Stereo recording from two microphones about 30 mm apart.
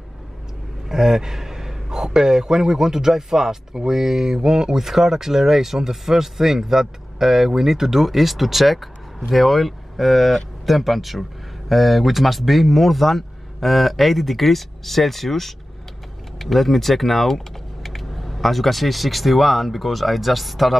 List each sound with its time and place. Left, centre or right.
0.8 s a man's voice: centre